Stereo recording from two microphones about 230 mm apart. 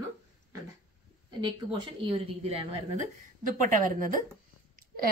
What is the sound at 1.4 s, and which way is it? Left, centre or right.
A woman's voice, right.